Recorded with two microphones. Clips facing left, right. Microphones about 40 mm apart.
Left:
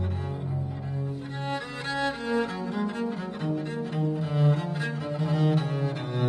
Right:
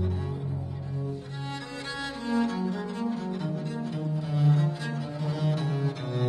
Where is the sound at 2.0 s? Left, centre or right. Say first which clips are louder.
Left 1 dB; centre.